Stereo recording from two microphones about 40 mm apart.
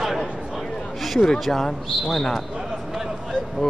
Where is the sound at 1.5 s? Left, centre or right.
Left.